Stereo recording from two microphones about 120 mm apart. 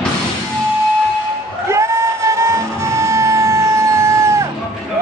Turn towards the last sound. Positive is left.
turn(degrees=-25)  # may be behind; listen again after turning